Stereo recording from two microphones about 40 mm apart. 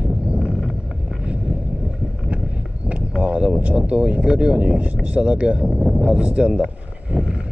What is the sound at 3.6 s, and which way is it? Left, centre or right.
Speech, right.